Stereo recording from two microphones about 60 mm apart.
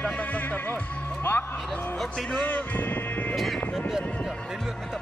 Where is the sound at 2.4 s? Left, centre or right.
Left.